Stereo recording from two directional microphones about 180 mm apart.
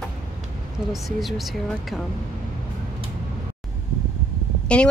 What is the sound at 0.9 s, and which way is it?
Speech, centre (ahead or behind).